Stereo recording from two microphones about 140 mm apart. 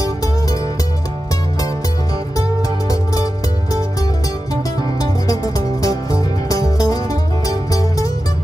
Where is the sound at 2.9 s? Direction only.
25° left (ahead or behind).